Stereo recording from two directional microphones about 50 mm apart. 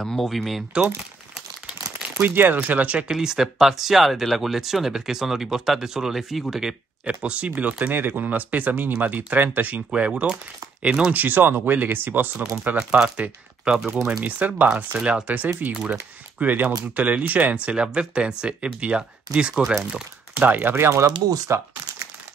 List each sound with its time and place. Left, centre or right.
0.0 s speech: centre
2.1 s speech: right
3.0 s speech: centre
7.1 s speech: right
7.9 s speech: right
11.1 s speech: right
13.7 s speech: centre
14.0 s speech: right
15.0 s speech: centre
15.7 s speech: centre
16.3 s speech: right
20.4 s speech: right
20.7 s speech: right
21.5 s speech: right